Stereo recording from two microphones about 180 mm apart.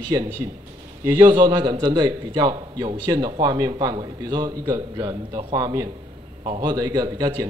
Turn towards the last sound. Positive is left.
turn(degrees=-20)  # may be behind; listen again after turning